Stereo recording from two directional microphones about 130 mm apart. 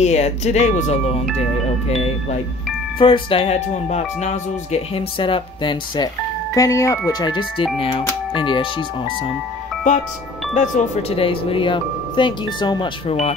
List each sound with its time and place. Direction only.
0.0 s speech: 60° left (ahead or behind)
3.0 s speech: 45° left (ahead or behind)
6.5 s speech: 25° left (ahead or behind)
10.5 s speech: 70° left (ahead or behind)
11.1 s speech: 45° left (ahead or behind)